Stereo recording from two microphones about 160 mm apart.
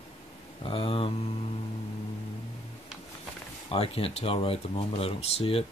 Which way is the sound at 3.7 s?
35° left (ahead or behind).